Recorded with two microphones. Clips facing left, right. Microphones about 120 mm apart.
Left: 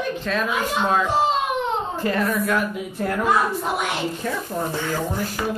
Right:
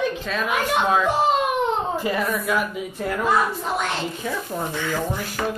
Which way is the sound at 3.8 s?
15° left (ahead or behind).